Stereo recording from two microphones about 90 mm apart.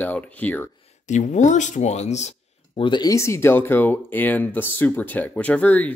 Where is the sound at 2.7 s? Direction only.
65° left (ahead or behind).